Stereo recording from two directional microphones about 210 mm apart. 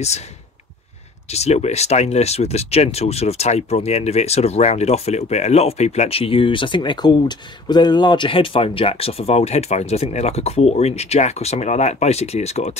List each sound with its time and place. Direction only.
1.3 s speech: 30° left (ahead or behind)